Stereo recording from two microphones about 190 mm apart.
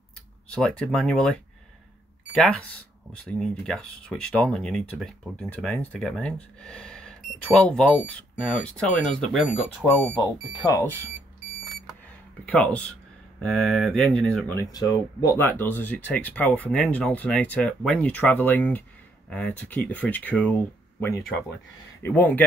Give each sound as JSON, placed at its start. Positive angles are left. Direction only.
{"t": 0.5, "sound": "speech", "side_deg": 5}
{"t": 10.5, "sound": "speech", "side_deg": 20}
{"t": 12.4, "sound": "speech", "side_deg": 5}